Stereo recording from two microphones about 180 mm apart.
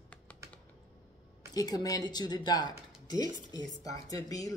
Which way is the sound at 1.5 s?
20° left (ahead or behind).